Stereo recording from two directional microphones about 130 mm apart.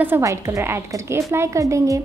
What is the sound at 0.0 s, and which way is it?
A woman's voice, 20° right (ahead or behind).